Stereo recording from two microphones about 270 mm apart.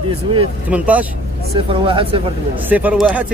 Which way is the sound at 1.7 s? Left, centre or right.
Centre.